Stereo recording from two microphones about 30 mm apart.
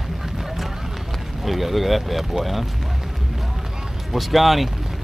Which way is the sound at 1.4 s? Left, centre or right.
Centre.